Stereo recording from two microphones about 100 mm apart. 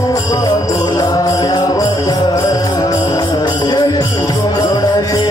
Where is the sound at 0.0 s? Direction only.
35° left (ahead or behind).